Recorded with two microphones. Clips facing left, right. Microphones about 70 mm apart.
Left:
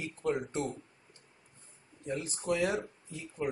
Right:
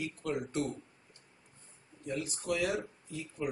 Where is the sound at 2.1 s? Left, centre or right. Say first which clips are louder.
Left 2 dB; left.